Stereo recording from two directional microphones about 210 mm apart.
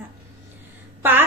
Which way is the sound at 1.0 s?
10° right (ahead or behind).